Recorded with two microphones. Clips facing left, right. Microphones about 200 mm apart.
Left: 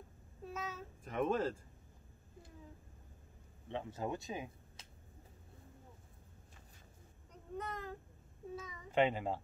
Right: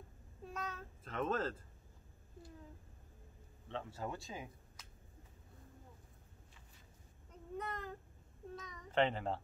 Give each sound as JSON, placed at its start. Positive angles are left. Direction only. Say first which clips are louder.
{"t": 0.5, "sound": "child singing", "louder": "left 1 dB", "side_deg": 5}
{"t": 1.0, "sound": "speech", "louder": "left 3 dB", "side_deg": 15}
{"t": 3.6, "sound": "speech", "louder": "left 3 dB", "side_deg": 20}
{"t": 7.5, "sound": "speech", "louder": "left 1 dB", "side_deg": 0}